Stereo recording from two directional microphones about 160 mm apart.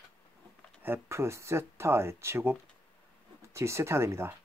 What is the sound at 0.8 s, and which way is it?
Speech, 15° right (ahead or behind).